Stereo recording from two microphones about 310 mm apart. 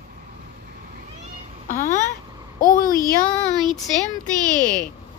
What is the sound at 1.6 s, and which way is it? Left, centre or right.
Speech, left.